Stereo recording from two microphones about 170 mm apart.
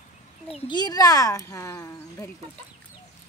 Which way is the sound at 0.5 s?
30° left (ahead or behind).